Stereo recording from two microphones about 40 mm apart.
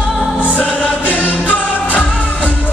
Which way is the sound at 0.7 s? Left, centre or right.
Left.